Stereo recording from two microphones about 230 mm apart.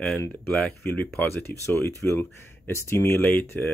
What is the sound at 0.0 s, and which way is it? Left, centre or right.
Speech, centre.